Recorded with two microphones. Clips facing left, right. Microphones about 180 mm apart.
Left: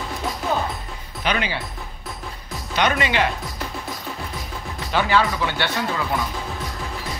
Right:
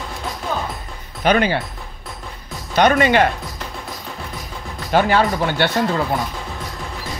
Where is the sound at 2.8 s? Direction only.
45° right (ahead or behind).